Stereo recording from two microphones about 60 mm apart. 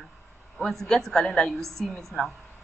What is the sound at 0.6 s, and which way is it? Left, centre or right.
A man's voice, centre.